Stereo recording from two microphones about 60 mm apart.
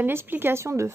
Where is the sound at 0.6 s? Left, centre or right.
Right.